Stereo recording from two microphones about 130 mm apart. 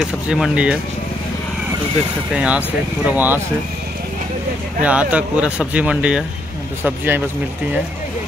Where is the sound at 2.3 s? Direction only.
10° right (ahead or behind).